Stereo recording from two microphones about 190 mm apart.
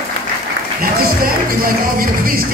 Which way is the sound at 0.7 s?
50° right (ahead or behind).